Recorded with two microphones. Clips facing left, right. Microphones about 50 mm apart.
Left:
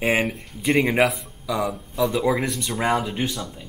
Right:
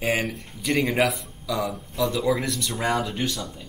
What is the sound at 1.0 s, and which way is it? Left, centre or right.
Speech, centre.